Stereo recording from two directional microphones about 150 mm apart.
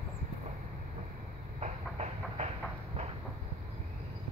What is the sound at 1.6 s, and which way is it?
Train, 45° right (ahead or behind).